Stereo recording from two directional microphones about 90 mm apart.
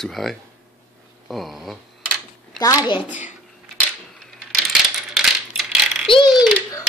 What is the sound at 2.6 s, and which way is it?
Speech, 40° left (ahead or behind).